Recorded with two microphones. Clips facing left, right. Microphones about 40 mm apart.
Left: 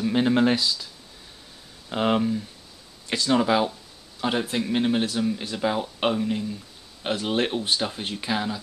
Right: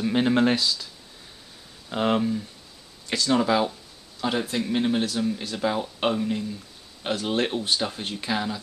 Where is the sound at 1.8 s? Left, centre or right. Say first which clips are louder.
Left 1 dB; centre.